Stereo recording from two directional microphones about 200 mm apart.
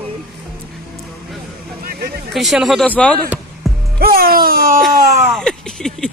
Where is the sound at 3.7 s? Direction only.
Centre (ahead or behind).